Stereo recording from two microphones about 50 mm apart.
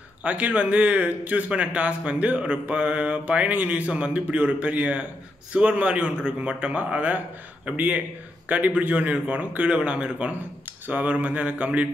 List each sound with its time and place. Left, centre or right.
0.2 s speech: right
10.9 s speech: right